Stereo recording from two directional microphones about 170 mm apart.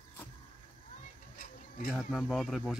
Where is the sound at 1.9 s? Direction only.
Centre (ahead or behind).